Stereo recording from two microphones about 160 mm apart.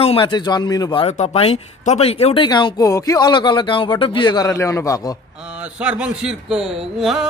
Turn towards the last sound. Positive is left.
turn(degrees=0)  # may be behind; listen again after turning